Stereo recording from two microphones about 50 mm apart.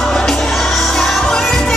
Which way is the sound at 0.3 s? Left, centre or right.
Centre.